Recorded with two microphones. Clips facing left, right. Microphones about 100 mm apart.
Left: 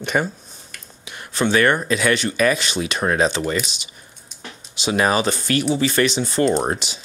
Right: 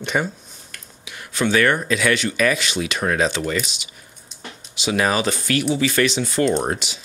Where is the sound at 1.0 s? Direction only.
35° left (ahead or behind).